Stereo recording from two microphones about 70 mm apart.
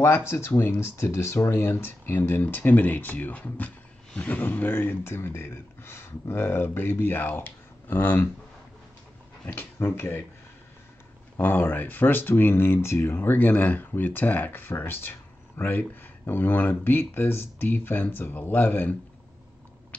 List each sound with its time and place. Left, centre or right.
0.0 s speech: left
1.7 s speech: left
9.5 s speech: left
11.3 s speech: left